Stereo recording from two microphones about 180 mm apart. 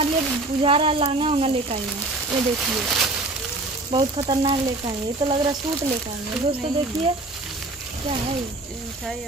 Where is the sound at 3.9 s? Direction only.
25° right (ahead or behind).